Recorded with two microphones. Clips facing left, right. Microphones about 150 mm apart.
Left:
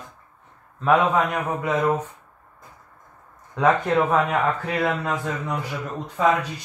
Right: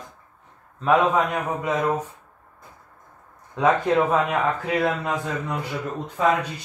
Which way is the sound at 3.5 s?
15° right (ahead or behind).